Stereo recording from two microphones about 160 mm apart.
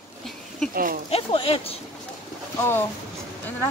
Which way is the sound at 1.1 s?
35° left (ahead or behind).